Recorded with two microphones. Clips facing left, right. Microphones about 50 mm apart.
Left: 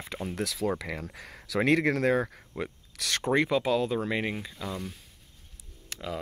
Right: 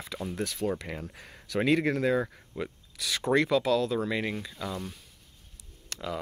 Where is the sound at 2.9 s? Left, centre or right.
Left.